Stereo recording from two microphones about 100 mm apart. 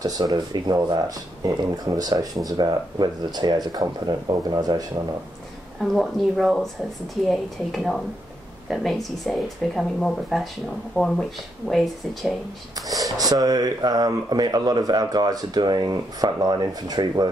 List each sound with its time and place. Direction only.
0.0 s speech: 45° right (ahead or behind)
5.8 s speech: centre (ahead or behind)
12.7 s speech: 35° right (ahead or behind)